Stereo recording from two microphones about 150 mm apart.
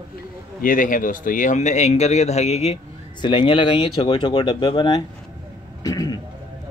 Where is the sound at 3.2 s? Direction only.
35° left (ahead or behind).